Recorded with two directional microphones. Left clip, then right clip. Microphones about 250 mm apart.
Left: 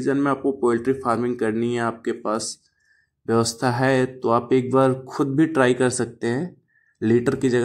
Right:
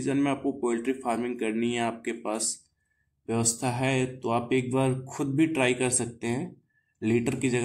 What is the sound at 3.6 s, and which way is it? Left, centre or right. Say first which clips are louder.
Speech: left 8 dB; left.